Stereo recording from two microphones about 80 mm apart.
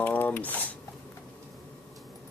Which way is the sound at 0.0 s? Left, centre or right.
Left.